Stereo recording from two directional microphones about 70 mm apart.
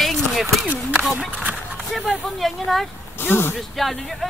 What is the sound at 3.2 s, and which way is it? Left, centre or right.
Speech, left.